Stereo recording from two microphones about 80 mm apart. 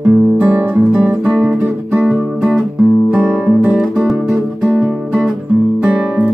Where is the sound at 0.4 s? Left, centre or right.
Right.